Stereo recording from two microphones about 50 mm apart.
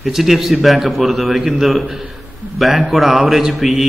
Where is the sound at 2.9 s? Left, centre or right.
Centre.